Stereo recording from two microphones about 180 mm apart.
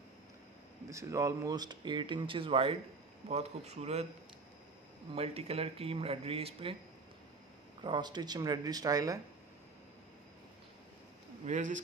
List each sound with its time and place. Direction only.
0.8 s speech: 15° right (ahead or behind); by 4.1 s 35° right (ahead or behind)
5.1 s speech: 35° right (ahead or behind)
7.8 s speech: 25° right (ahead or behind)
11.4 s speech: 45° right (ahead or behind)